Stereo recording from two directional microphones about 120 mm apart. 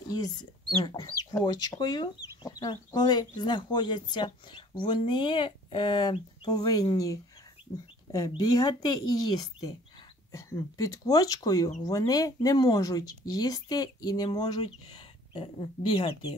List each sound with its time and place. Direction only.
0.1 s speech: 35° left (ahead or behind); by 16.2 s 50° left (ahead or behind)